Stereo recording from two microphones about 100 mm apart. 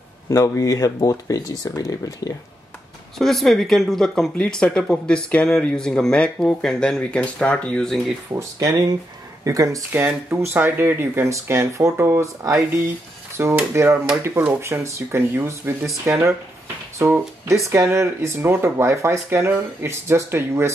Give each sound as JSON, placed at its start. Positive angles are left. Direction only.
{"t": 0.3, "sound": "speech", "side_deg": 35}
{"t": 3.2, "sound": "speech", "side_deg": 5}
{"t": 8.3, "sound": "speech", "side_deg": -35}
{"t": 9.9, "sound": "speech", "side_deg": -25}